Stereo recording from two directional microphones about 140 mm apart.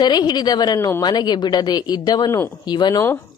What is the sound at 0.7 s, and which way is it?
Speech, 20° left (ahead or behind).